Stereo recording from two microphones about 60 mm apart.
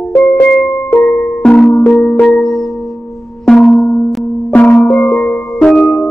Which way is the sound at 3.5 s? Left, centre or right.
Centre.